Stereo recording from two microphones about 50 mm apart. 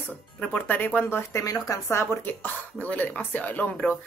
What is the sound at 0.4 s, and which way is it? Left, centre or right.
Speech, left.